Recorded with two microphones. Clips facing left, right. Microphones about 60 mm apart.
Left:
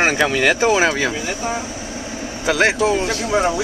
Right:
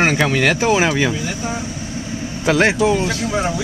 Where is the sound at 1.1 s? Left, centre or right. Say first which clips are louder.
Even; left.